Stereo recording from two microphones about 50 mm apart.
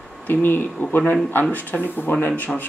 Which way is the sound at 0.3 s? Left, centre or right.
Left.